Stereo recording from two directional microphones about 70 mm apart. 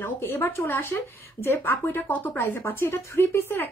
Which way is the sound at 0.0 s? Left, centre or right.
Left.